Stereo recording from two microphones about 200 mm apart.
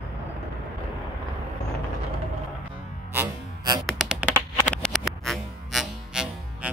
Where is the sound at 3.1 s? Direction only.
20° right (ahead or behind).